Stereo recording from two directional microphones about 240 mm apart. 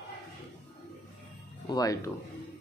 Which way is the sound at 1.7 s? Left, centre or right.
Centre.